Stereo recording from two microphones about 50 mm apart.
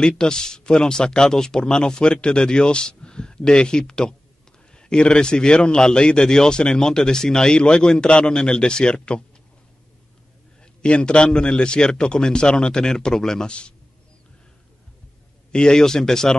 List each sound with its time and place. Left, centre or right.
0.2 s a man's voice: centre
10.6 s a man's voice: left
15.5 s a man's voice: centre